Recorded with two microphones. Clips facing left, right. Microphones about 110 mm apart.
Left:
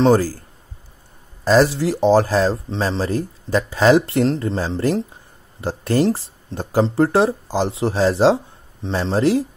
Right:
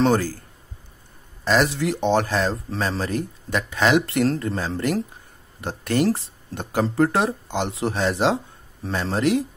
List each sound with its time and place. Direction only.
0.0 s speech: 35° left (ahead or behind)
1.4 s speech: 35° left (ahead or behind)